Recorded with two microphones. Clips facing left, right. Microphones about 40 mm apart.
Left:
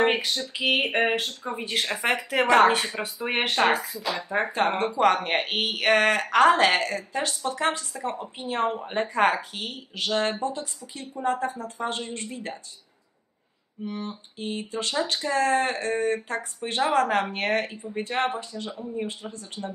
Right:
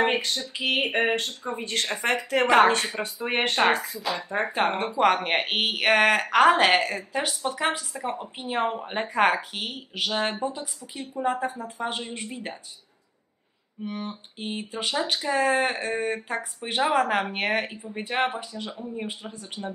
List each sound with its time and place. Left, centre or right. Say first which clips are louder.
0.0 s speech: left 1 dB; centre
2.4 s speech: even; centre
3.0 s speech: right 1 dB; centre
4.5 s speech: even; centre
13.8 s speech: even; right